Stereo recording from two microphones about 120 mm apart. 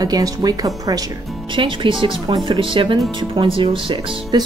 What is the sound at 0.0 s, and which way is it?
Speech, 30° right (ahead or behind).